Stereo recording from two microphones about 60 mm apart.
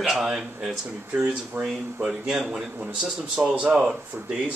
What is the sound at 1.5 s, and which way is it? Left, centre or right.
Speech, right.